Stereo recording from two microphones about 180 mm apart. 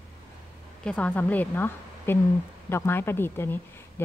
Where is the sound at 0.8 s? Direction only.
5° left (ahead or behind).